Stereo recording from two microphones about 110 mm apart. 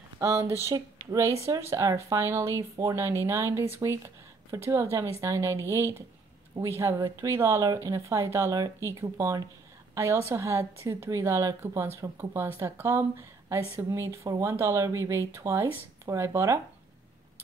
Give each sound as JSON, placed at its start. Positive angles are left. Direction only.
{"t": 0.2, "sound": "a woman's voice", "side_deg": -30}